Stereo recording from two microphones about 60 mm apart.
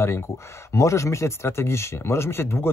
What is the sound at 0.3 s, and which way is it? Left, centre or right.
Speech, left.